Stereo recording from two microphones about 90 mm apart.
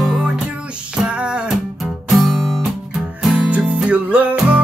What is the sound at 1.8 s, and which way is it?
Music, centre (ahead or behind).